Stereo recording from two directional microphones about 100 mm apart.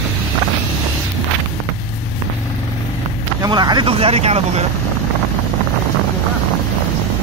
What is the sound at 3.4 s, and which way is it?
Speech, 45° right (ahead or behind).